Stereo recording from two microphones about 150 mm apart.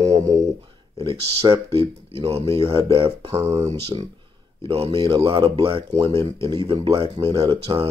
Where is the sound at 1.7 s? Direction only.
40° right (ahead or behind).